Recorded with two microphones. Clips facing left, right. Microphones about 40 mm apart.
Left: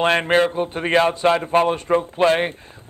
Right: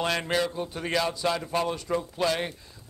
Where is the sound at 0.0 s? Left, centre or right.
Left.